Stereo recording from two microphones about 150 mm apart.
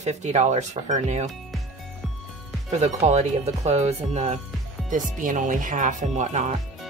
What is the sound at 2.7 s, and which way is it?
Speech, 50° right (ahead or behind).